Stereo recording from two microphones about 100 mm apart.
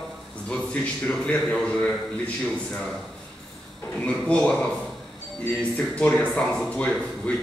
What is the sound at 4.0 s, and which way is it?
A man's voice, 10° left (ahead or behind).